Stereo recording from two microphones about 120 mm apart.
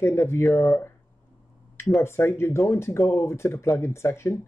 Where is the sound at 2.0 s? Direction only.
20° left (ahead or behind).